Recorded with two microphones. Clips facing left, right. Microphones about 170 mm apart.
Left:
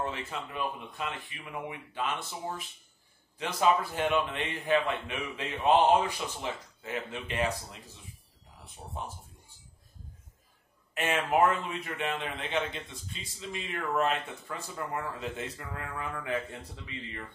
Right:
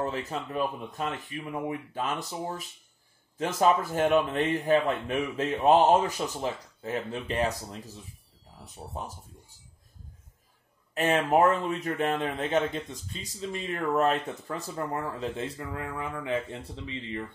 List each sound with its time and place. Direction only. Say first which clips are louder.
0.0 s a man's voice: right 4 dB; 40° right (ahead or behind)
11.0 s a man's voice: right 3 dB; 35° right (ahead or behind)